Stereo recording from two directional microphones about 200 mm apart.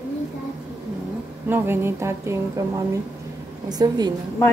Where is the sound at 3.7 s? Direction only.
20° right (ahead or behind).